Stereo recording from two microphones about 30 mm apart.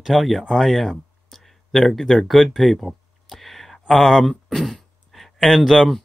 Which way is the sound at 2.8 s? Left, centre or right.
Centre.